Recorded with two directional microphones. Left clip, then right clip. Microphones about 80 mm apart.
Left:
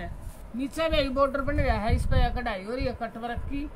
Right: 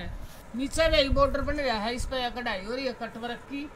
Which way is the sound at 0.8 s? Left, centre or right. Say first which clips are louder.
Right 3 dB; right.